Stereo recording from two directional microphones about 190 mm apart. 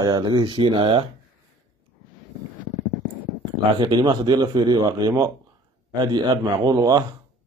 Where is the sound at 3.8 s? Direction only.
25° right (ahead or behind).